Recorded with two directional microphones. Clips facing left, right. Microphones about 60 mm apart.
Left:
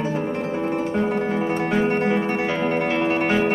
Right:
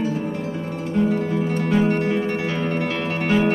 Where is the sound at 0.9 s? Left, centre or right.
Left.